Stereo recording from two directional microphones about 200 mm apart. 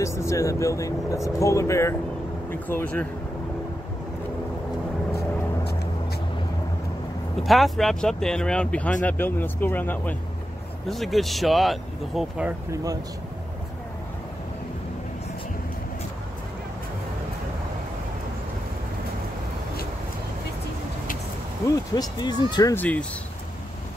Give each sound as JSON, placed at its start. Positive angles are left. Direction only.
{"t": 0.0, "sound": "speech", "side_deg": 15}
{"t": 7.4, "sound": "speech", "side_deg": 0}
{"t": 21.6, "sound": "speech", "side_deg": 20}